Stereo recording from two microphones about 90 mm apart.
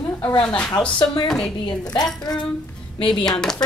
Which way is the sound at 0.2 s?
15° left (ahead or behind).